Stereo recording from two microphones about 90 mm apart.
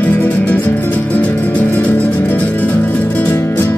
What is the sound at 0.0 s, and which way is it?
Music, 15° left (ahead or behind).